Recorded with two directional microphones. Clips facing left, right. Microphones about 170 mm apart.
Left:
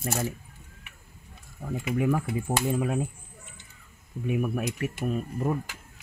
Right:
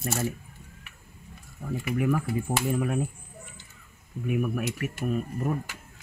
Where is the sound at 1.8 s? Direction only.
20° left (ahead or behind).